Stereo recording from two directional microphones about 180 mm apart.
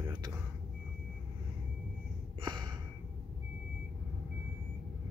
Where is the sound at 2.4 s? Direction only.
25° right (ahead or behind).